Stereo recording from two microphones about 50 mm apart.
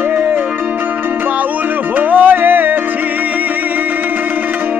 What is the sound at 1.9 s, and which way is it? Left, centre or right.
Music, right.